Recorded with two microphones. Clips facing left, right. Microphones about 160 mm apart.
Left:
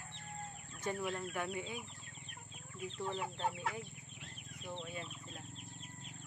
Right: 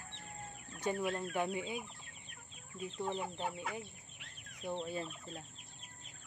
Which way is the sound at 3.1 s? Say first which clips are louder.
Even; 15° right (ahead or behind).